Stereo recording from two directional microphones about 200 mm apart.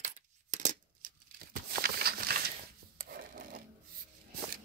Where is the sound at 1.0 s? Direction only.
45° right (ahead or behind).